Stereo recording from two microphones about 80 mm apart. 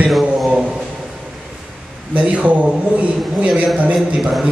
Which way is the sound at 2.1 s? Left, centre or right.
Centre.